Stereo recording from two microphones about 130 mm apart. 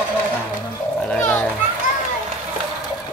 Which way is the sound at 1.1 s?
10° left (ahead or behind).